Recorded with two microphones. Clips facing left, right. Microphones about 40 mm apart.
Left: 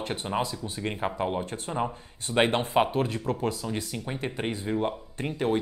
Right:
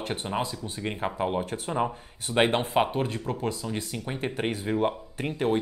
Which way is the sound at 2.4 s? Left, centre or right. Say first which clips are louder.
Even; centre.